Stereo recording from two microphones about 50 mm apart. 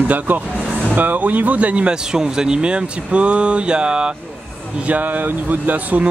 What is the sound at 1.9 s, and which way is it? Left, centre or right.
Speech, centre.